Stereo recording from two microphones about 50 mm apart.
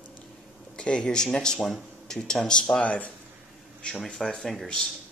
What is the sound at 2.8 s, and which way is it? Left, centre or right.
Speech, left.